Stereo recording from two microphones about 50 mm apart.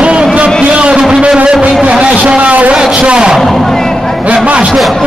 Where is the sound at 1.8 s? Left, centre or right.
Right.